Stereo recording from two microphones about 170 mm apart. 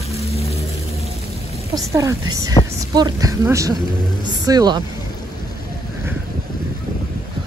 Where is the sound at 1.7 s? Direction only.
20° right (ahead or behind).